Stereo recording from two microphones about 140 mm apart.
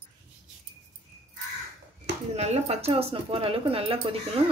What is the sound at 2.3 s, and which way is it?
Speech, 50° right (ahead or behind).